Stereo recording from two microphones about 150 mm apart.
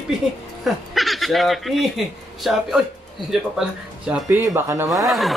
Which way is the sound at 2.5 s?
5° right (ahead or behind).